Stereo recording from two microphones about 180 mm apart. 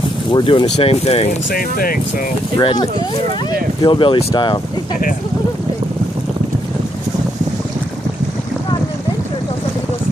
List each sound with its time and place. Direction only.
0.3 s speech: 25° left (ahead or behind)
1.5 s speech: 55° left (ahead or behind)
2.6 s speech: 25° left (ahead or behind)